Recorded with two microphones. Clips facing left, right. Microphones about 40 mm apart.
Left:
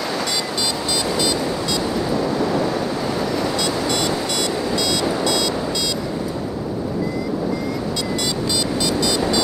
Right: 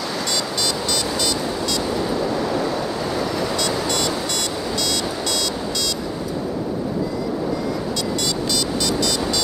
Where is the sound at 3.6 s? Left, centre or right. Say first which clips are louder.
Left 1 dB; centre.